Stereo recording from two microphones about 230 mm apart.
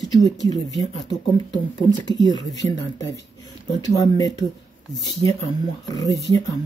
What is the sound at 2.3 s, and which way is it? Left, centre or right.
Speech, left.